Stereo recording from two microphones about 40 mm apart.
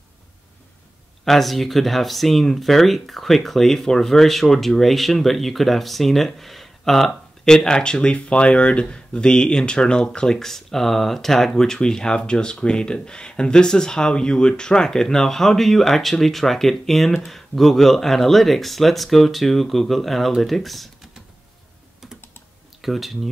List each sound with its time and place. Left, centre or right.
1.2 s speech: centre
7.4 s speech: centre
10.4 s speech: centre
22.8 s speech: centre